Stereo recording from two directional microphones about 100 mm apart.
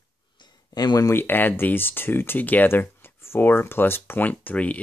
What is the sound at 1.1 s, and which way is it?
Speech, 20° left (ahead or behind).